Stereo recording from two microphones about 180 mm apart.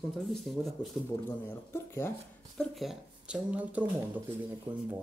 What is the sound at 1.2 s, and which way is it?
Speech, 10° left (ahead or behind).